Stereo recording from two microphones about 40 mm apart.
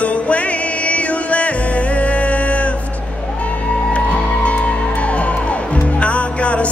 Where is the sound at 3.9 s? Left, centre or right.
Left.